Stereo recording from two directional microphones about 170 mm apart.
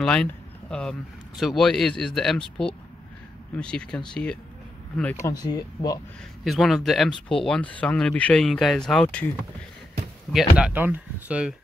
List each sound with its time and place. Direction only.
0.0 s speech: 5° left (ahead or behind)
5.2 s speech: 25° left (ahead or behind)
6.4 s speech: centre (ahead or behind)
10.6 s speech: 10° right (ahead or behind)